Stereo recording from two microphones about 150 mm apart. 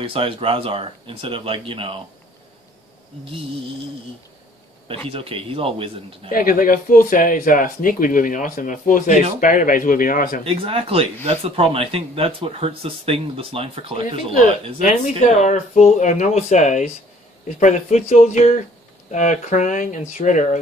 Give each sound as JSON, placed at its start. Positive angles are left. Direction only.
{"t": 0.0, "sound": "speech", "side_deg": -35}
{"t": 5.1, "sound": "speech", "side_deg": -40}
{"t": 6.2, "sound": "speech", "side_deg": 70}
{"t": 10.4, "sound": "speech", "side_deg": -40}
{"t": 14.3, "sound": "speech", "side_deg": 55}